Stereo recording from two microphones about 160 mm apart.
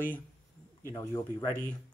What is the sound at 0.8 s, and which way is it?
Speech, 25° left (ahead or behind).